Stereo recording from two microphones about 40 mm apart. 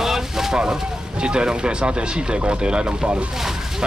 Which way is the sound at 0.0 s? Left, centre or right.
Centre.